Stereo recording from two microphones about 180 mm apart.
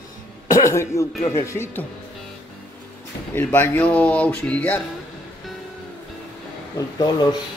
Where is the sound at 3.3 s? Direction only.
10° left (ahead or behind).